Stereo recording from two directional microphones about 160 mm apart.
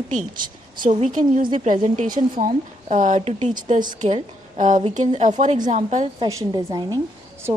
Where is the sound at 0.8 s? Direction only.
55° right (ahead or behind).